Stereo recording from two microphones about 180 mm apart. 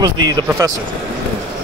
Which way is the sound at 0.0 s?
20° right (ahead or behind).